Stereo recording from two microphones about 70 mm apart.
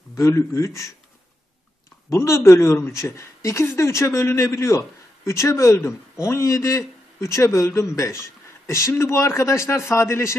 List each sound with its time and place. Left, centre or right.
0.1 s speech: left
2.0 s speech: left